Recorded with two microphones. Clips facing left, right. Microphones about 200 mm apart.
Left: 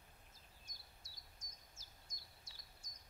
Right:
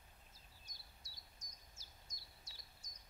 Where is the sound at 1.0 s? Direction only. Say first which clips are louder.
Even; 50° left (ahead or behind).